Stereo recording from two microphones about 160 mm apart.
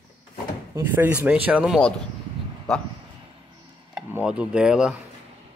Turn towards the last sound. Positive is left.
turn(degrees=-5)  # may be behind; listen again after turning